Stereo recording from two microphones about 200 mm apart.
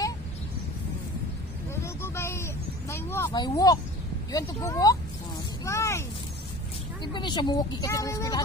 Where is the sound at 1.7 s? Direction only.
15° left (ahead or behind).